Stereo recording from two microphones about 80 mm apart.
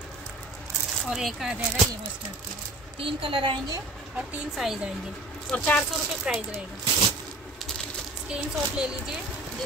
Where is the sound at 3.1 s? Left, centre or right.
Right.